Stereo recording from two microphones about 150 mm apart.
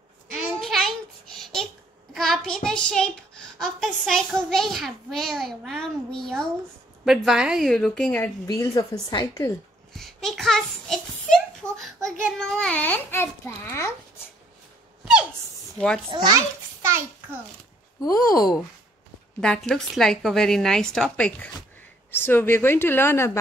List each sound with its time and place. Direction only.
0.6 s a sound: centre (ahead or behind)
2.1 s child singing: centre (ahead or behind)
3.6 s a child's voice: centre (ahead or behind)
8.5 s speech: 25° left (ahead or behind)
9.9 s a child's voice: centre (ahead or behind); by 13.9 s 20° left (ahead or behind)
16.3 s a sound: 15° right (ahead or behind)
18.0 s speech: 25° left (ahead or behind)
19.4 s a child's voice: 5° left (ahead or behind)